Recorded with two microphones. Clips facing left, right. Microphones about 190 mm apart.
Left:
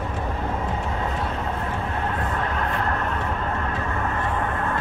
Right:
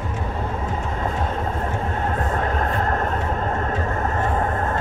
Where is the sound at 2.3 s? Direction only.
40° right (ahead or behind).